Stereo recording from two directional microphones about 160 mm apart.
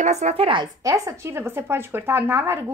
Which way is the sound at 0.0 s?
45° right (ahead or behind).